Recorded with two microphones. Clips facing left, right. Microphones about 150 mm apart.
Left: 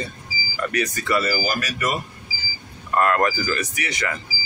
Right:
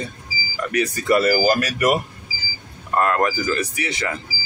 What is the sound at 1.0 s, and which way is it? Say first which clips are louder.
Speech: right 8 dB; 45° right (ahead or behind).